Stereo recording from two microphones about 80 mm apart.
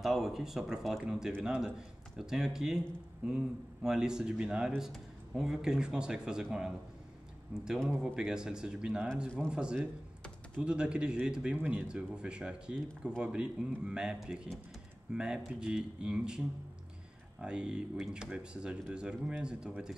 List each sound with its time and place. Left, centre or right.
0.0 s speech: centre
7.5 s speech: centre
8.0 s speech: centre